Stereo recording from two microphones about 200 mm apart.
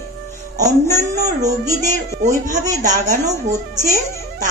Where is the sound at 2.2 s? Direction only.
40° right (ahead or behind).